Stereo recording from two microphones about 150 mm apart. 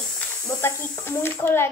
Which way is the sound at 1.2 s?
15° left (ahead or behind).